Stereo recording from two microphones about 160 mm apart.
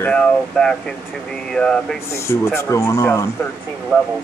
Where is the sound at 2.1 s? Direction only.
15° left (ahead or behind).